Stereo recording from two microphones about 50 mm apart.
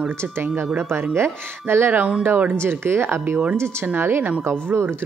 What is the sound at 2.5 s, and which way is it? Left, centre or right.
Speech, right.